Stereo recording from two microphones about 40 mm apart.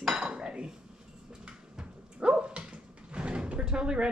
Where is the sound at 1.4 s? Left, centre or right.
Right.